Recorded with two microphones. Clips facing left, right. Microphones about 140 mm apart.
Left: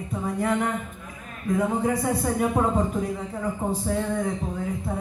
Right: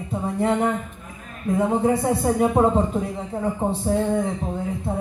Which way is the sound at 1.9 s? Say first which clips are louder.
Right 4 dB; 25° right (ahead or behind).